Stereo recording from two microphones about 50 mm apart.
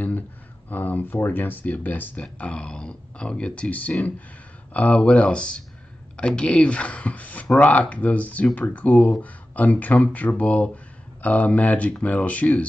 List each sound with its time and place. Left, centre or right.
0.7 s speech: left